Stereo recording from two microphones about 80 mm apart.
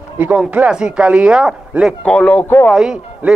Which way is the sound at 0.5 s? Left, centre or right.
Centre.